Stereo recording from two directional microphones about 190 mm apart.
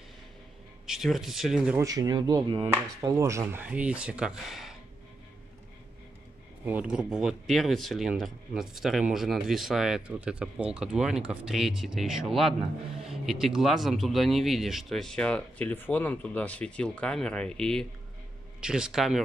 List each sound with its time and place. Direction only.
0.8 s speech: centre (ahead or behind)
1.9 s speech: 20° right (ahead or behind); by 4.7 s centre (ahead or behind)
6.6 s speech: 5° right (ahead or behind)